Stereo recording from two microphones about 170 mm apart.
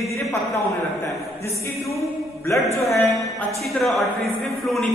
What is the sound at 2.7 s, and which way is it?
Speech, 15° left (ahead or behind).